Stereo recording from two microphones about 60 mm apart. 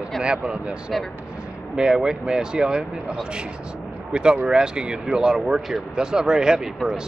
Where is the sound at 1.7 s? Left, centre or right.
Centre.